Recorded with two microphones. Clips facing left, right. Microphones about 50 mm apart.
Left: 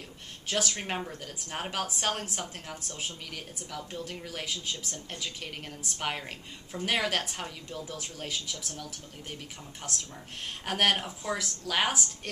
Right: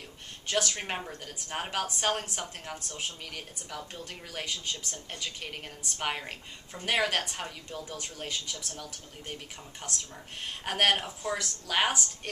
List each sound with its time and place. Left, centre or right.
0.5 s a woman's voice: centre
9.8 s a woman's voice: centre